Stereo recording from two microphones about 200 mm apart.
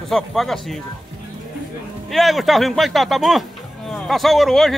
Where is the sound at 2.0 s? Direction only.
Centre (ahead or behind).